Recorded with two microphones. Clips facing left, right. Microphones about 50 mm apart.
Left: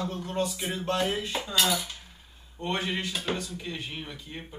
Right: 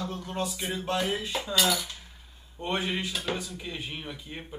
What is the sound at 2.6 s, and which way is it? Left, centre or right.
Speech, centre.